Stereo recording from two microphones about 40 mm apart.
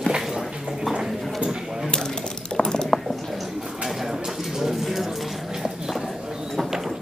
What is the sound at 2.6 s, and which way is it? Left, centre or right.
Ratchet, centre.